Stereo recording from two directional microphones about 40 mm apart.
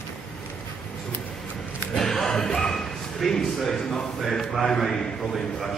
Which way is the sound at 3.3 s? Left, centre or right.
Centre.